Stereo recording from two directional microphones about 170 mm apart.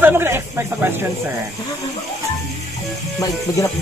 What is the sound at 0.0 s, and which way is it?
Speech, 15° right (ahead or behind).